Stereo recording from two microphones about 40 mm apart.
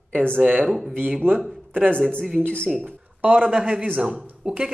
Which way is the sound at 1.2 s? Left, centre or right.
Right.